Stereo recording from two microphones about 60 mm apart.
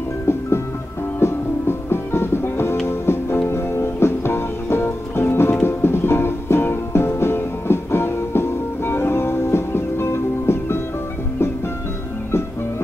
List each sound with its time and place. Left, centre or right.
1.2 s music: left